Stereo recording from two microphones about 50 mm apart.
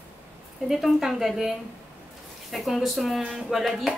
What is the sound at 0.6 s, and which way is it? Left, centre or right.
A woman's voice, centre.